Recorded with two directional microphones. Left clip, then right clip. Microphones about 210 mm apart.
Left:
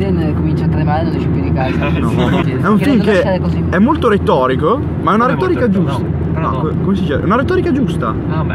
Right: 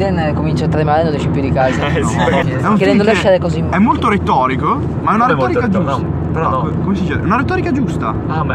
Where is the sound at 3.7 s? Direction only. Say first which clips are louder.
Left 1 dB; 20° left (ahead or behind).